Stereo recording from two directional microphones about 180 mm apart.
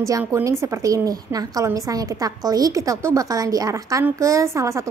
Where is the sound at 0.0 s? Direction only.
15° right (ahead or behind).